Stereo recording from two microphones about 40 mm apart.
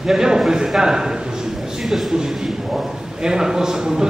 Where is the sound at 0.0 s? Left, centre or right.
Centre.